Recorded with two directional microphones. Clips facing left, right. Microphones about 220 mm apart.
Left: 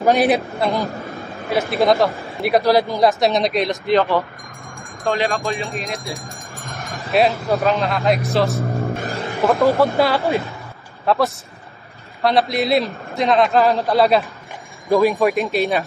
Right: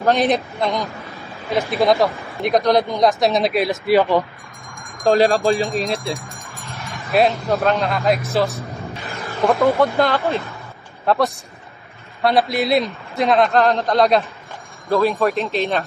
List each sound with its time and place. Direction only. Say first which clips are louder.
0.0 s a man's voice: left 2 dB; 10° left (ahead or behind); by 4.2 s 10° right (ahead or behind)
5.0 s speech: right 6 dB; 35° right (ahead or behind)
7.1 s a man's voice: even; centre (ahead or behind)
8.5 s vehicle: left 8 dB; 45° left (ahead or behind)
9.4 s a man's voice: even; centre (ahead or behind)
10.0 s speech: left 1 dB; 10° left (ahead or behind)
11.1 s a man's voice: even; centre (ahead or behind)